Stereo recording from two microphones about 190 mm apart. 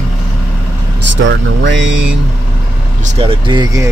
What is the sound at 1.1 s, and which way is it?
Speech, 75° right (ahead or behind).